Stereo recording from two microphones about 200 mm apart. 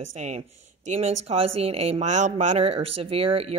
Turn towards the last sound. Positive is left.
turn(degrees=-30)  # may be behind; listen again after turning